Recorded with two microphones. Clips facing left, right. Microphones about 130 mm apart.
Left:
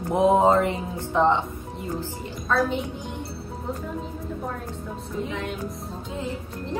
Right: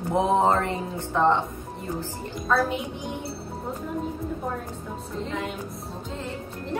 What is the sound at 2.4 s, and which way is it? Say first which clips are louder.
Speech: even; centre (ahead or behind).